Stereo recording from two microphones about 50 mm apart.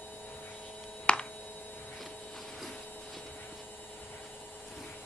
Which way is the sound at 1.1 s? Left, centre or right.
Left.